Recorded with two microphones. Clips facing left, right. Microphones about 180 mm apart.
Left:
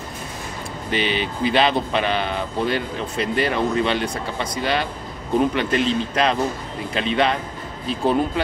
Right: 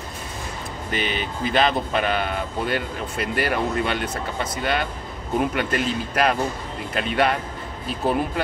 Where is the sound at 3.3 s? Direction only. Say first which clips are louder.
Left 2 dB; 25° left (ahead or behind).